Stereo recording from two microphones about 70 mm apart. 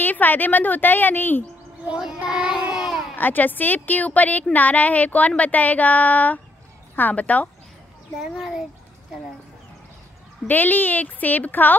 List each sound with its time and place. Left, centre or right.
0.0 s a woman's voice: left
1.9 s speech: centre
3.2 s a woman's voice: left
8.2 s a child's voice: centre
10.4 s a woman's voice: left